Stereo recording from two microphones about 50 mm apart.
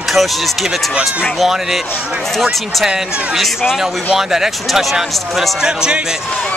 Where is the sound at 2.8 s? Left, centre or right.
Centre.